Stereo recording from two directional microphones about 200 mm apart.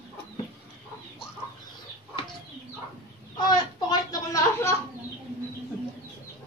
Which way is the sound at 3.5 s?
20° left (ahead or behind).